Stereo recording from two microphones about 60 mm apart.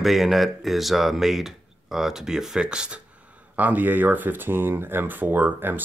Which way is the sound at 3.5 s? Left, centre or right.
Right.